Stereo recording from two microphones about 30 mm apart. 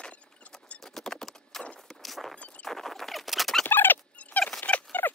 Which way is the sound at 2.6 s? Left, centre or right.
Centre.